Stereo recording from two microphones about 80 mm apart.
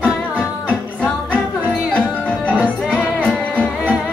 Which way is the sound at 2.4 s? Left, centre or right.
Centre.